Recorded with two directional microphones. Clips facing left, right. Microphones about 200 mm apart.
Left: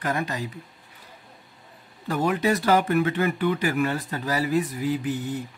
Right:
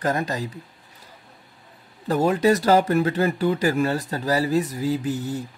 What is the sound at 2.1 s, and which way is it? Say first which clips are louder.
Speech: right 4 dB; 30° right (ahead or behind).